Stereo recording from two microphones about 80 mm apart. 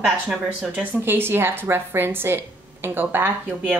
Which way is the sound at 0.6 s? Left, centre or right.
Centre.